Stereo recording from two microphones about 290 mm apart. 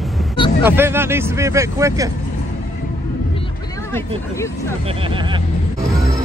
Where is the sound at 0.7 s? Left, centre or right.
Centre.